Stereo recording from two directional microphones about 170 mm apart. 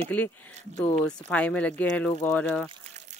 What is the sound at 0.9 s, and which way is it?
Speech, 5° left (ahead or behind).